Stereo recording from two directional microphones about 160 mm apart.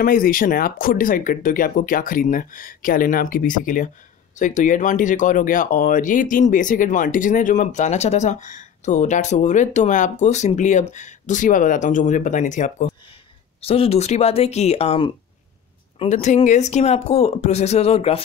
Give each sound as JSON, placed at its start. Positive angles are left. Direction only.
{"t": 0.0, "sound": "speech", "side_deg": 60}
{"t": 13.6, "sound": "speech", "side_deg": 40}